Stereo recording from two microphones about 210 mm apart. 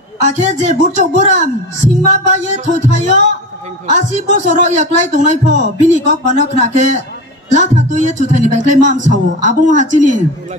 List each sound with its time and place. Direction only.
0.2 s speech: 35° right (ahead or behind)